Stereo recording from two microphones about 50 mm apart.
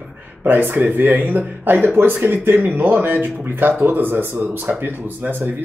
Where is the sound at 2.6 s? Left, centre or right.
Right.